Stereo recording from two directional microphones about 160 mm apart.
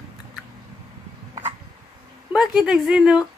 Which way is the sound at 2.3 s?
5° right (ahead or behind).